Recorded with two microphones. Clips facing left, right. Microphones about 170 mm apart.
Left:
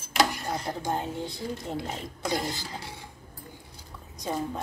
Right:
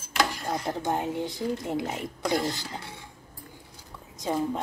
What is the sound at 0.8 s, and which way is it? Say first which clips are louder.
A woman's voice: right 2 dB; 20° right (ahead or behind).